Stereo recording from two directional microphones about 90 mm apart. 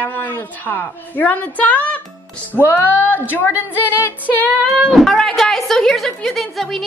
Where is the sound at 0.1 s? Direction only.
20° left (ahead or behind).